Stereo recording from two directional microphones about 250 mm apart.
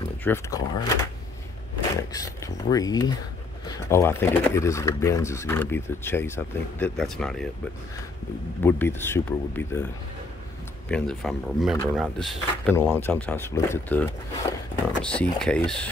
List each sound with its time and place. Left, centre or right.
0.0 s speech: centre
2.1 s speech: centre
8.6 s speech: centre
10.9 s speech: centre